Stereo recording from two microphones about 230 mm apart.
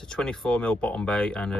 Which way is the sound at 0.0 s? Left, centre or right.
Centre.